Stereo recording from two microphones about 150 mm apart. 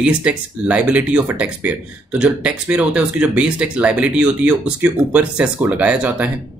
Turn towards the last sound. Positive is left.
turn(degrees=-10)  # may be behind; listen again after turning